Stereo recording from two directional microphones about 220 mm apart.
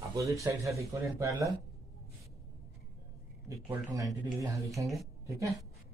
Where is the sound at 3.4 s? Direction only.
15° right (ahead or behind).